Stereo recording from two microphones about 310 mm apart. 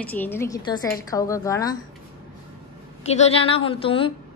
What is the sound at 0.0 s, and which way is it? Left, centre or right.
A woman's voice, centre.